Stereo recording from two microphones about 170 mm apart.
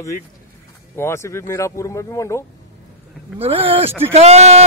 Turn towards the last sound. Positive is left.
turn(degrees=-40)  # may be behind; listen again after turning